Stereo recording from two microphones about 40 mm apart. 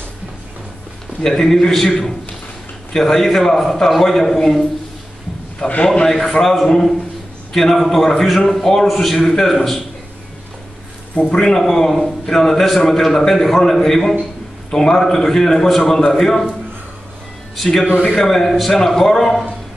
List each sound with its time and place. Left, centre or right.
1.2 s a man's voice: centre
5.6 s a man's voice: left
11.1 s a man's voice: left
11.5 s a man's voice: centre
18.1 s a man's voice: centre